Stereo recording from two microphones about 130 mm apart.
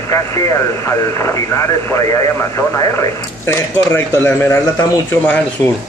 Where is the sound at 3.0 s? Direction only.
20° left (ahead or behind).